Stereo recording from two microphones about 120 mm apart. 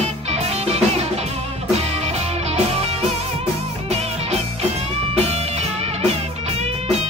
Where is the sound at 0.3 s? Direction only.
60° right (ahead or behind).